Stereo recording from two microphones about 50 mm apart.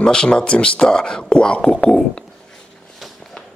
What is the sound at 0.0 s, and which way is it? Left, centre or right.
Speech, centre.